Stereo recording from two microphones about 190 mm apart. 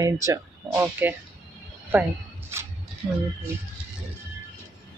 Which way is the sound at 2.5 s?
15° right (ahead or behind).